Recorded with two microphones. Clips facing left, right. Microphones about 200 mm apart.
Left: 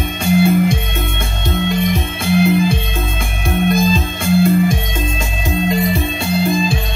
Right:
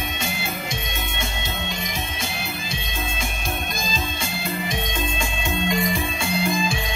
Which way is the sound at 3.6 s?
55° left (ahead or behind).